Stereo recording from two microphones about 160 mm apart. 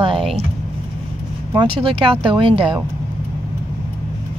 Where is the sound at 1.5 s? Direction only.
30° right (ahead or behind).